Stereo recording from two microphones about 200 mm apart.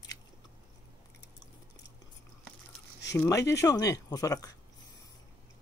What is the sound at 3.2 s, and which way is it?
Speech, 15° left (ahead or behind).